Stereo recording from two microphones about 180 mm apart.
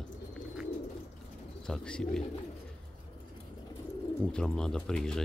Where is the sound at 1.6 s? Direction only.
5° left (ahead or behind).